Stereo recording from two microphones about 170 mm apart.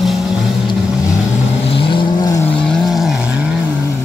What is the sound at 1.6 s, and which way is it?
Vehicle, 30° left (ahead or behind).